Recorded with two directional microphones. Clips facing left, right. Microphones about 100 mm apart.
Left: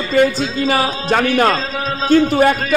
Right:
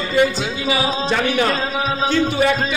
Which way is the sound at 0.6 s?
50° left (ahead or behind).